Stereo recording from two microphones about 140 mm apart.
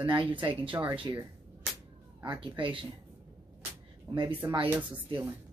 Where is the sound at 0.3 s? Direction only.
35° right (ahead or behind).